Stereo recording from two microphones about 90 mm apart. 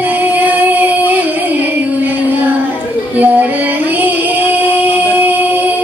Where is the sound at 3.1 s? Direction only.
20° right (ahead or behind).